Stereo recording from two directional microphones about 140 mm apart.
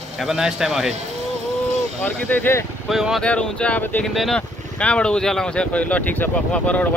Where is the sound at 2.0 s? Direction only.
15° left (ahead or behind).